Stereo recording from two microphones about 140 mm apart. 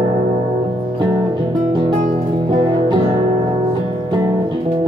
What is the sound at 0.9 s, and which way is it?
Music, 30° right (ahead or behind).